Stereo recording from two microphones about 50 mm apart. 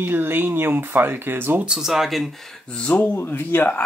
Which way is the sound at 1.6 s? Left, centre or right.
Centre.